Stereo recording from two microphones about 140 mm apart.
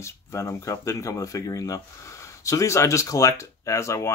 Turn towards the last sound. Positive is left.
turn(degrees=20)  # may be behind; listen again after turning